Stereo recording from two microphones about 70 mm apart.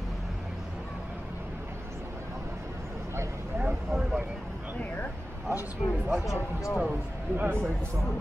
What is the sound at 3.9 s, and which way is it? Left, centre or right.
Vehicle, centre.